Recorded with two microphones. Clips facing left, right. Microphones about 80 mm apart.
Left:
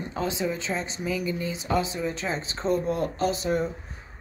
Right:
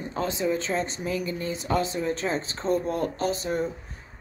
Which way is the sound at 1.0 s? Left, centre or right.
Right.